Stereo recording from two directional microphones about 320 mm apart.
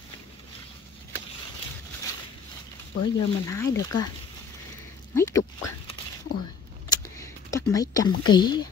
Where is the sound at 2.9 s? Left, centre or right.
Left.